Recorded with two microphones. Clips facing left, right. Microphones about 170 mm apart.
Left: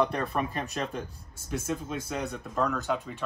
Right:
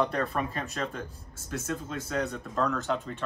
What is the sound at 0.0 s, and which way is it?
Speech, 15° left (ahead or behind).